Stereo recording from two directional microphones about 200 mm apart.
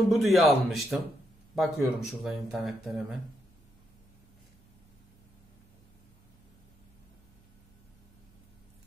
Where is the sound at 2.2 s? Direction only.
Centre (ahead or behind).